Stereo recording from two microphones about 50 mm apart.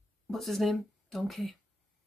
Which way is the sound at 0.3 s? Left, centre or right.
Centre.